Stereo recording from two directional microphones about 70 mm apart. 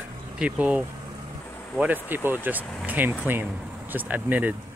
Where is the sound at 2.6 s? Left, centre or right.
Centre.